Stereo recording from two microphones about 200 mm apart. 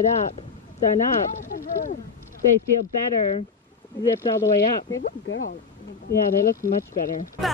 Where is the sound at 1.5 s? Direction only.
45° left (ahead or behind).